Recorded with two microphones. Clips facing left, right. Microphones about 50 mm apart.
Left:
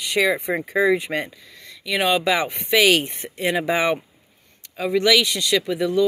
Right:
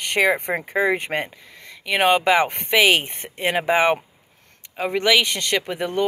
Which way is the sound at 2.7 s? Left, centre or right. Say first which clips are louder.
Left 1 dB; right.